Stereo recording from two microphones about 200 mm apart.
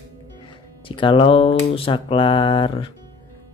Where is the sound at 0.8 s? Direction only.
25° left (ahead or behind).